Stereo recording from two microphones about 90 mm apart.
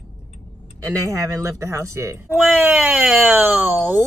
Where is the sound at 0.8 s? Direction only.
35° right (ahead or behind).